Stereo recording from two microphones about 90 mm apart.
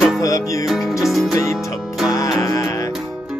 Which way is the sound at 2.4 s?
40° left (ahead or behind).